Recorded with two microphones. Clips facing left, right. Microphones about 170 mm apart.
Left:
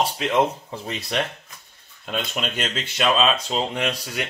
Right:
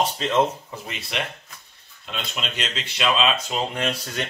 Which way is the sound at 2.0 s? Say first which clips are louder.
Left 4 dB; 50° left (ahead or behind).